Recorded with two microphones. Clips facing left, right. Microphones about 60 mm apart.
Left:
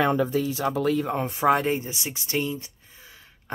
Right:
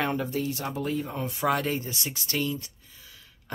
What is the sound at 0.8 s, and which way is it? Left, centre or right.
Speech, left.